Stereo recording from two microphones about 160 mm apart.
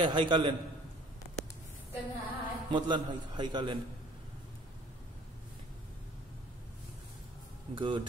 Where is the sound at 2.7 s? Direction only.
30° right (ahead or behind).